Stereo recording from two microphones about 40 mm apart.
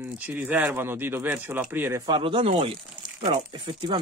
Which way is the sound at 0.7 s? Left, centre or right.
Right.